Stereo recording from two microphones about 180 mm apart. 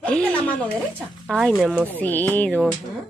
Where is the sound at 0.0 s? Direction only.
5° left (ahead or behind).